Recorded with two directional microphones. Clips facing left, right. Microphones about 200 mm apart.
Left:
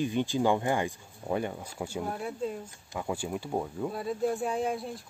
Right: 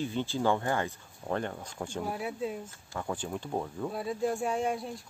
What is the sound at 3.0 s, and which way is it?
Speech, 10° left (ahead or behind).